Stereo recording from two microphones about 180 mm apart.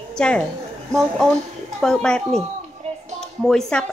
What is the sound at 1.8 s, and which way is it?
Speech, 5° left (ahead or behind).